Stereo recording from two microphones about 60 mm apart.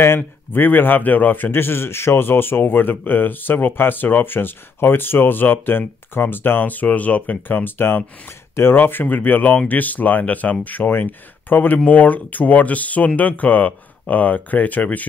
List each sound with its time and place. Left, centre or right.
0.2 s speech: left